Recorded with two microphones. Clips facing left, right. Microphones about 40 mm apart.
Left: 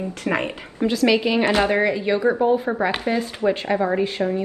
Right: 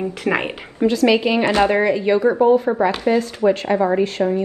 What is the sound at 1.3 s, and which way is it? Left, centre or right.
Speech, centre.